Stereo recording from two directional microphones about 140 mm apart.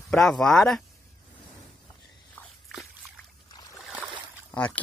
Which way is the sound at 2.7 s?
Centre (ahead or behind).